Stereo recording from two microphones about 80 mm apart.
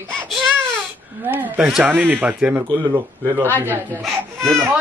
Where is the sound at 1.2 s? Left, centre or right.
Right.